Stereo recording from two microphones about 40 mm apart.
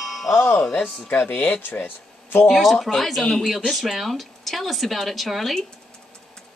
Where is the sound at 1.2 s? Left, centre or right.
Left.